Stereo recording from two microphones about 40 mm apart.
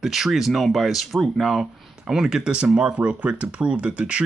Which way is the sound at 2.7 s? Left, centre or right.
Right.